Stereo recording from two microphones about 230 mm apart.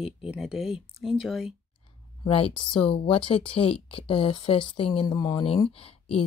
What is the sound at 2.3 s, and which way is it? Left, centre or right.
Speech, left.